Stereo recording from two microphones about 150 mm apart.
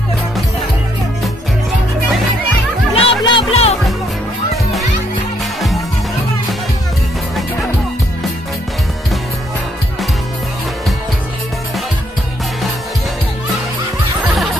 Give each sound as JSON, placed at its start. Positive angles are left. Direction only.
{"t": 2.9, "sound": "music", "side_deg": 35}
{"t": 14.2, "sound": "music", "side_deg": 0}